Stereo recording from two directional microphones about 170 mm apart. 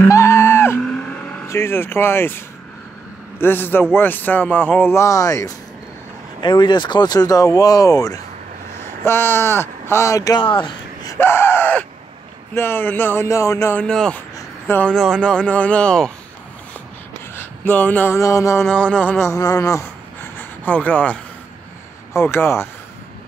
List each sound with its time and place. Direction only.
0.1 s vehicle: 15° left (ahead or behind)
3.3 s speech: 15° left (ahead or behind)
11.1 s screaming: 15° left (ahead or behind)
12.5 s speech: 15° left (ahead or behind)
17.4 s speech: 10° left (ahead or behind)